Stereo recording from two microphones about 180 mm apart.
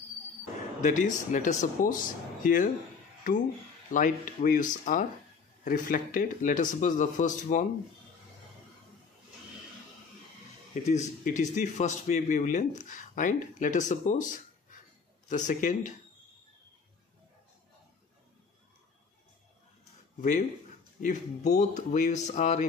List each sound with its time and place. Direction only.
0.8 s a man's voice: 45° left (ahead or behind)
3.9 s a man's voice: 45° left (ahead or behind)
10.7 s a man's voice: 40° left (ahead or behind)
20.2 s a man's voice: 40° left (ahead or behind)